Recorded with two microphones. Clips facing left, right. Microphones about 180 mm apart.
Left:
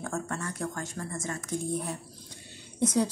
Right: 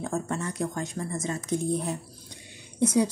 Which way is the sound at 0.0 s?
15° right (ahead or behind).